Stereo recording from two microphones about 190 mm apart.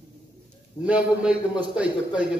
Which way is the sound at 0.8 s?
5° right (ahead or behind).